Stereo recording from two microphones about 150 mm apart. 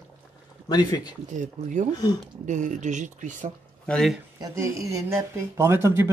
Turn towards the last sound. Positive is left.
turn(degrees=-15)  # may be behind; listen again after turning